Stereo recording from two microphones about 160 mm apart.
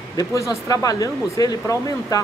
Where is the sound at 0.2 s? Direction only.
20° left (ahead or behind).